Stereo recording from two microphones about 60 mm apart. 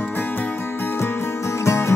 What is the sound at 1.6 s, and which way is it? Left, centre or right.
Music, left.